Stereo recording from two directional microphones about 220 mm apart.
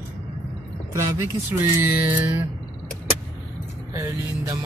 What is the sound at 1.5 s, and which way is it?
Speech, 10° right (ahead or behind).